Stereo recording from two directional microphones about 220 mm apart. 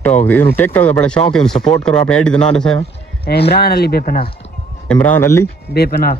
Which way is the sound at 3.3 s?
45° left (ahead or behind).